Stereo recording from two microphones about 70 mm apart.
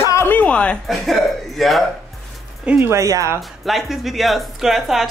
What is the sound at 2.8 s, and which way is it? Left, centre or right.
Speech, right.